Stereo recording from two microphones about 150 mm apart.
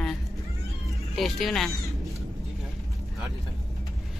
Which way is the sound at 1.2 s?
Centre (ahead or behind).